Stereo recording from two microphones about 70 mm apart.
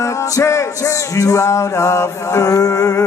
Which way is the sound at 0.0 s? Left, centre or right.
Left.